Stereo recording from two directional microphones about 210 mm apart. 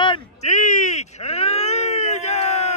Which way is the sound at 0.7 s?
35° left (ahead or behind).